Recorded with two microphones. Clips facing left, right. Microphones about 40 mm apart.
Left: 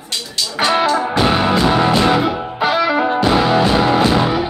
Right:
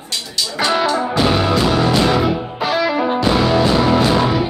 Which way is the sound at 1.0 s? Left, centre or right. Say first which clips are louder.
Left 1 dB; left.